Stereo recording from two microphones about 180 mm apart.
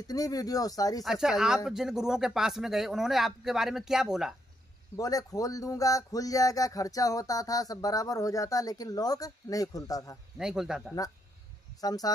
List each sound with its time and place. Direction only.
0.0 s speech: 20° left (ahead or behind)
1.0 s speech: 5° right (ahead or behind)
4.9 s speech: 20° left (ahead or behind)
10.3 s speech: 5° right (ahead or behind)
11.8 s speech: 20° left (ahead or behind)